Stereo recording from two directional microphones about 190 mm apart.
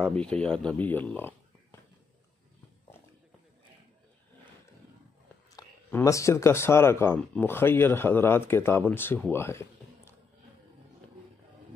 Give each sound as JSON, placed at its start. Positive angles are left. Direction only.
{"t": 0.0, "sound": "speech", "side_deg": 5}
{"t": 5.9, "sound": "speech", "side_deg": 15}
{"t": 9.3, "sound": "a sound", "side_deg": 15}